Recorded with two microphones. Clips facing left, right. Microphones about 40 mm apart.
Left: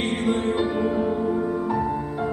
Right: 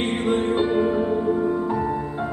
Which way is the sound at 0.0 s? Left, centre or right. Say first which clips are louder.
Right 1 dB; right.